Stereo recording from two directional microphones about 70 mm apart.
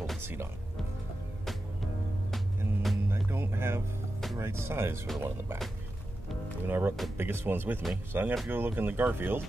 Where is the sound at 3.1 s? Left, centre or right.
Right.